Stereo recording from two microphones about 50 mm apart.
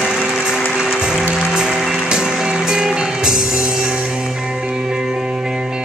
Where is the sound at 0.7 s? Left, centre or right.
Centre.